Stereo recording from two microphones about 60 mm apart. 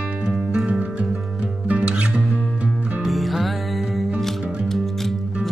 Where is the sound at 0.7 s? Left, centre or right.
Right.